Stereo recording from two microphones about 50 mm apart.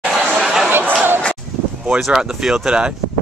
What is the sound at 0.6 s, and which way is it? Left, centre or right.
Chatter, right.